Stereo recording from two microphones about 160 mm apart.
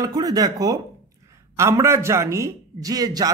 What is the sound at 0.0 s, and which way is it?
A man's voice, 25° right (ahead or behind).